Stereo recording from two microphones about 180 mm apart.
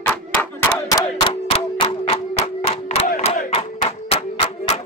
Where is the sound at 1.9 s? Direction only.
30° left (ahead or behind).